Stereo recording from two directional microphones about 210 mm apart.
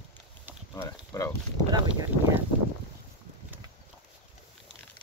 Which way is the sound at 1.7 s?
15° right (ahead or behind).